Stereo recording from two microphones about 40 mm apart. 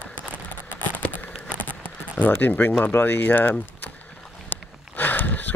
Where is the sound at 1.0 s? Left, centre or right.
Left.